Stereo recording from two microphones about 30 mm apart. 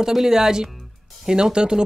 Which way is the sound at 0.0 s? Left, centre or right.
Centre.